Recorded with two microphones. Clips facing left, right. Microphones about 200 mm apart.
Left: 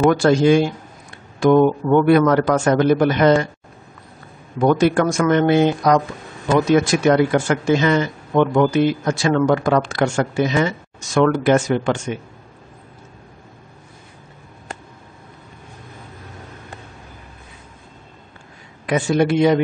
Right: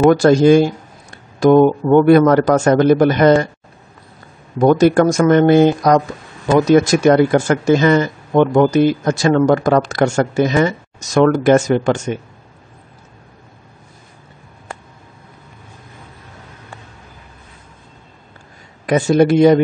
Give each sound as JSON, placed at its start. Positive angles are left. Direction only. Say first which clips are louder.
{"t": 0.1, "sound": "a man's voice", "louder": "right 4 dB", "side_deg": -40}
{"t": 4.6, "sound": "a man's voice", "louder": "right 4 dB", "side_deg": -40}
{"t": 18.9, "sound": "a man's voice", "louder": "right 5 dB", "side_deg": -40}